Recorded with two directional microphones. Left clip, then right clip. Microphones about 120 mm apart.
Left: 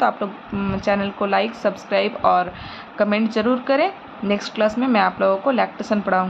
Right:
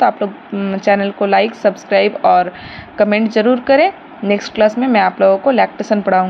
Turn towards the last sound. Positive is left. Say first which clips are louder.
# right 6 dB
turn(degrees=-30)  # may be behind; listen again after turning